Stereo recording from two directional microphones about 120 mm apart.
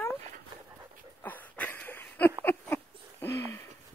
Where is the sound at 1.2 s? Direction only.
15° left (ahead or behind).